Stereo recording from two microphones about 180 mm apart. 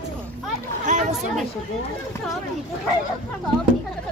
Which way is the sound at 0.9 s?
40° right (ahead or behind).